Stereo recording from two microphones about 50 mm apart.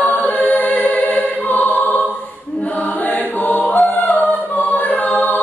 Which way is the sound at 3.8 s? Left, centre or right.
Left.